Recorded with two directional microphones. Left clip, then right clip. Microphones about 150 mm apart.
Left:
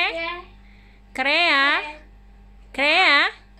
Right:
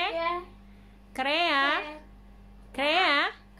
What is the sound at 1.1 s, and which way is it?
Speech, 35° left (ahead or behind).